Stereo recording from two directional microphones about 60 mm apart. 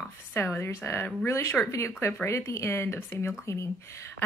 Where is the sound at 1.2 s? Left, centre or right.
Left.